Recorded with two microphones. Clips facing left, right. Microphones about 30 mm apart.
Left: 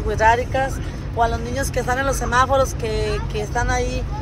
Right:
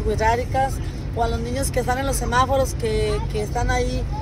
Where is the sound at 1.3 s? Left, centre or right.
Right.